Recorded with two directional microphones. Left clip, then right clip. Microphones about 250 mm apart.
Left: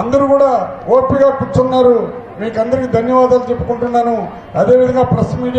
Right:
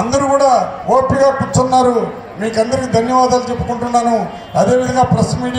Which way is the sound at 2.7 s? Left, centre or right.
Right.